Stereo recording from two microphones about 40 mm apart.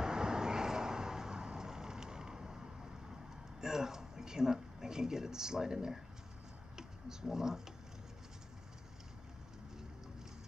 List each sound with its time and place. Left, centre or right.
0.0 s vehicle: centre
3.6 s speech: centre